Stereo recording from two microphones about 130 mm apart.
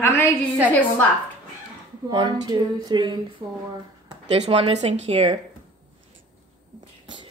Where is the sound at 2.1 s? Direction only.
35° right (ahead or behind).